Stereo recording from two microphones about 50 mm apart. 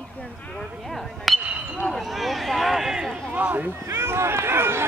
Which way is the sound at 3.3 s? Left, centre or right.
Right.